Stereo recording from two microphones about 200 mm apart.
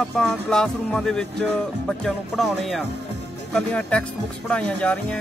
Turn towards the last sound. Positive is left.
turn(degrees=5)  # may be behind; listen again after turning